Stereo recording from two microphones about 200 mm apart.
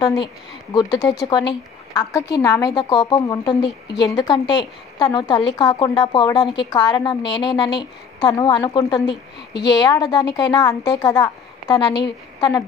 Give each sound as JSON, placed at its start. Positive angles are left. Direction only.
{"t": 0.0, "sound": "a woman's voice", "side_deg": 20}